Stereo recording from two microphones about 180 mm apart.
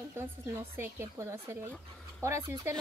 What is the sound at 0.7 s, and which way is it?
Speech, 15° right (ahead or behind).